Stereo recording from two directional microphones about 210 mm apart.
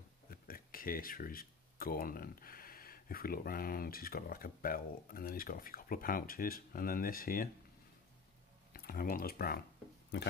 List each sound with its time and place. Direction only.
0.3 s speech: 45° left (ahead or behind)
8.7 s speech: 45° left (ahead or behind)